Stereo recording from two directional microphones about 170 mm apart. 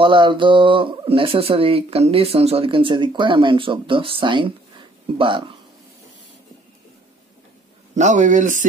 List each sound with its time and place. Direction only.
0.0 s speech: 30° right (ahead or behind)
7.9 s speech: 45° right (ahead or behind)